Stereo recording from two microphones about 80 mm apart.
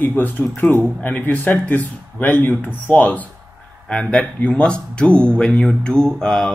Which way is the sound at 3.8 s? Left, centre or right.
Centre.